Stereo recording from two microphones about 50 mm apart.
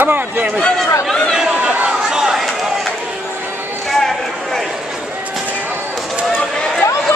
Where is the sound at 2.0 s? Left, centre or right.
Centre.